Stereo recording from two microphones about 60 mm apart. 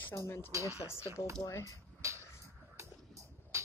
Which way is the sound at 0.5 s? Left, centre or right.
Right.